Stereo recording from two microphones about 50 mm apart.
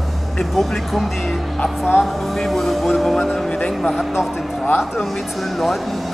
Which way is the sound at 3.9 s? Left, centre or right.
Centre.